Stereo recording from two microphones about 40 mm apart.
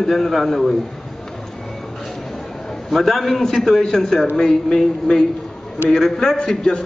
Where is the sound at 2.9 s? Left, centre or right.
Centre.